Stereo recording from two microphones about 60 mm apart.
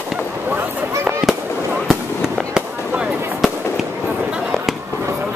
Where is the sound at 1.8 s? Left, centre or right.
Centre.